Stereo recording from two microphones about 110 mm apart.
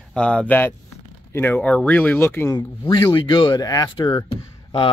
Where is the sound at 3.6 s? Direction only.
35° left (ahead or behind).